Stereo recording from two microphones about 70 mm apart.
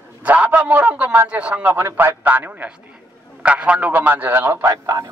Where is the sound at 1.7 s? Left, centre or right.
Right.